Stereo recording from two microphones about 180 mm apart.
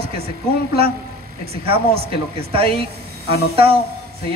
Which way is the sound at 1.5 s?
30° right (ahead or behind).